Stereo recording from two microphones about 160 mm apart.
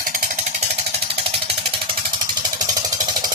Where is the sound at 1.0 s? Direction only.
35° right (ahead or behind).